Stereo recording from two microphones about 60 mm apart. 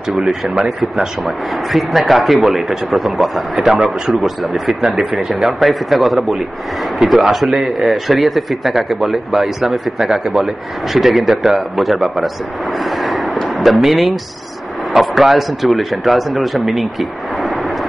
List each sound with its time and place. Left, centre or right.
0.2 s speech: centre
12.7 s a sound: centre
14.9 s speech: centre